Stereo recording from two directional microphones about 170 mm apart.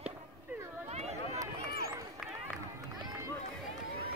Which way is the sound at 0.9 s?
40° right (ahead or behind).